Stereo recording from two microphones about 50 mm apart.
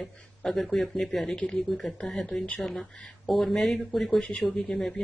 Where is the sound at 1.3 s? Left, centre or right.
Centre.